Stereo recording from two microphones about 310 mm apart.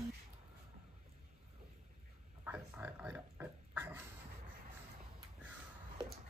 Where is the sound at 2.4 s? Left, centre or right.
Centre.